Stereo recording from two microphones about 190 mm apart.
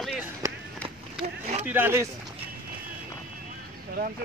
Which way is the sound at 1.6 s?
10° right (ahead or behind).